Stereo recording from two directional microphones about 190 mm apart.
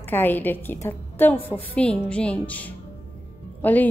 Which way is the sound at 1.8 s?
5° left (ahead or behind).